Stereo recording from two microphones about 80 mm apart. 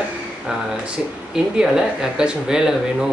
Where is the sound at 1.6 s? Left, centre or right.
Centre.